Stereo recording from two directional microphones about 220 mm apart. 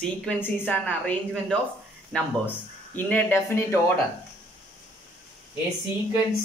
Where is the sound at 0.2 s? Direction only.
10° left (ahead or behind).